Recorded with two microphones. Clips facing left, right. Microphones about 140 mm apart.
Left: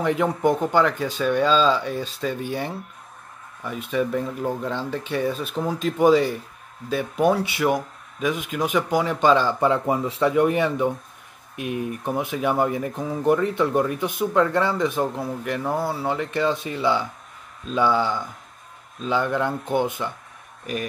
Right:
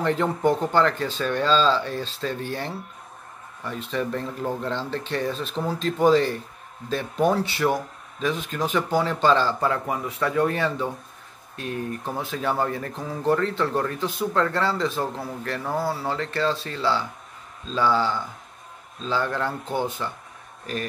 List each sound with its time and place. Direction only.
0.0 s speech: 10° left (ahead or behind)